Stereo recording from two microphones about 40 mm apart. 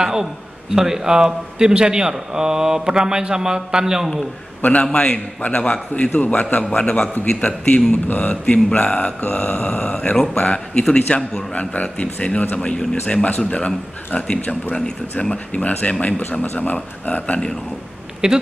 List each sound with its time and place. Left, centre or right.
0.0 s a man's voice: centre
4.6 s a man's voice: left
4.9 s a man's voice: left
6.7 s a man's voice: left
18.2 s speech: right